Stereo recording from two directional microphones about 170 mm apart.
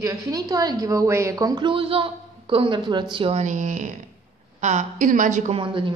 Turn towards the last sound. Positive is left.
turn(degrees=-30)  # may be behind; listen again after turning